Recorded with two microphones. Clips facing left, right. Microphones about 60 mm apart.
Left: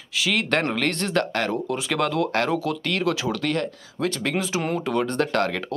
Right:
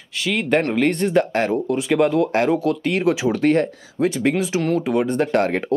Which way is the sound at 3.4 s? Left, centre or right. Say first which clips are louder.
Right 11 dB; right.